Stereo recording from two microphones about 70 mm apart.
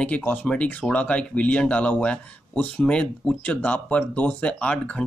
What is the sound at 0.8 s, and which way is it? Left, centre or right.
Speech, centre.